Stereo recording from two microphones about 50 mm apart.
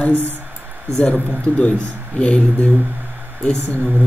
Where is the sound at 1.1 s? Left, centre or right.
Left.